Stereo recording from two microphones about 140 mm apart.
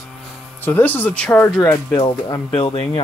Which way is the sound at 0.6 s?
15° left (ahead or behind).